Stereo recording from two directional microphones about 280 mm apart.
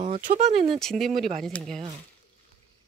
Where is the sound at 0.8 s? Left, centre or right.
Centre.